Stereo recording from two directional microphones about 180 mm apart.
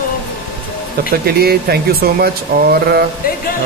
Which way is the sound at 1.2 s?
60° right (ahead or behind).